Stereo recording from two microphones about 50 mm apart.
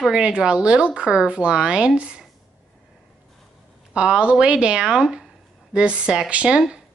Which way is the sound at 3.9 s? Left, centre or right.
Right.